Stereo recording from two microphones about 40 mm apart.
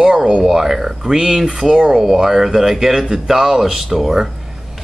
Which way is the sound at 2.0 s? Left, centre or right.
Centre.